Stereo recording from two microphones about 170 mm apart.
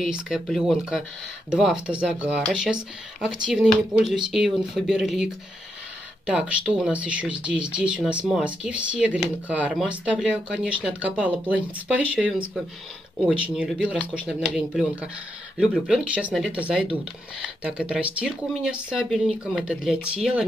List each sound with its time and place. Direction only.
0.0 s speech: 5° right (ahead or behind)